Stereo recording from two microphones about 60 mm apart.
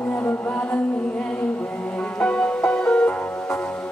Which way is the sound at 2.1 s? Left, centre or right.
Centre.